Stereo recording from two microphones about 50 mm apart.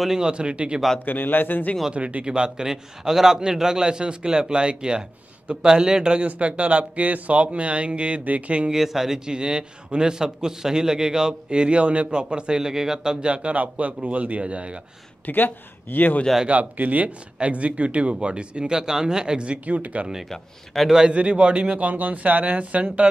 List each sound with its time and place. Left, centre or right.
0.2 s speech: centre
1.0 s speech: left
1.9 s a man's voice: right
8.6 s a man's voice: centre
13.3 s speech: right
15.2 s speech: left
16.4 s speech: right
20.2 s a man's voice: centre
20.9 s speech: centre